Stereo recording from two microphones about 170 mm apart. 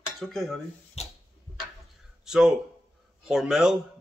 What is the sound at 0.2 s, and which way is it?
Speech, centre (ahead or behind).